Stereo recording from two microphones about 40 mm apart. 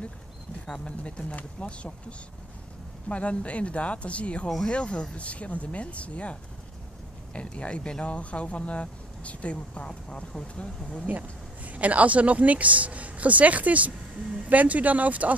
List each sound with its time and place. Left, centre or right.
0.8 s speech: left
7.3 s speech: left
11.1 s speech: right